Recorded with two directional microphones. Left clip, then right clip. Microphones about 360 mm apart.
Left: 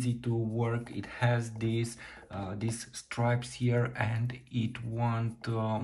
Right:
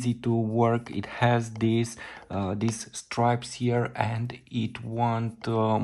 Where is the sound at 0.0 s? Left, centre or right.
Centre.